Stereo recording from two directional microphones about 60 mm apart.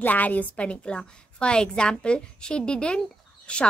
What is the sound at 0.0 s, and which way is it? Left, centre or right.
A woman's voice, left.